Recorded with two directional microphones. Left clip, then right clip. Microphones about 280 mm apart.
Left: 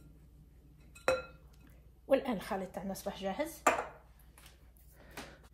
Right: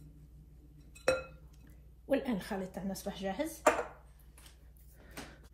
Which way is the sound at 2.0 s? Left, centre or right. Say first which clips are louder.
Left 3 dB; left.